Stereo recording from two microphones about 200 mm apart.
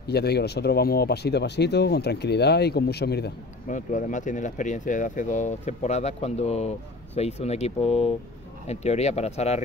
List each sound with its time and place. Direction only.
0.0 s speech: 55° left (ahead or behind)
3.7 s speech: 40° left (ahead or behind)